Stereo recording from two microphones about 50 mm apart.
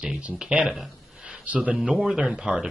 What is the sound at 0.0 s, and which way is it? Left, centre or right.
Speech, right.